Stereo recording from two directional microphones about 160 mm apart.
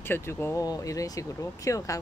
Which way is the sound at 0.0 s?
15° left (ahead or behind).